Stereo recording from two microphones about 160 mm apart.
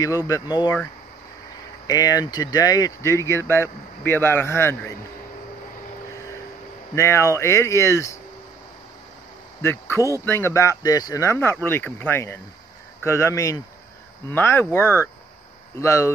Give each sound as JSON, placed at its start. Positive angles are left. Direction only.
{"t": 0.0, "sound": "speech", "side_deg": 25}
{"t": 1.9, "sound": "speech", "side_deg": 25}
{"t": 7.0, "sound": "speech", "side_deg": 15}
{"t": 9.6, "sound": "speech", "side_deg": 15}